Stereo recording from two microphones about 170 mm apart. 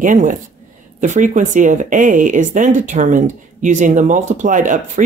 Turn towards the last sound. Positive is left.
turn(degrees=-50)  # may be behind; listen again after turning